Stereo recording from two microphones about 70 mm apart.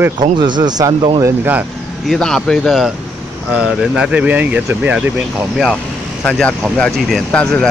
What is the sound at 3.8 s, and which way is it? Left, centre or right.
Speech, centre.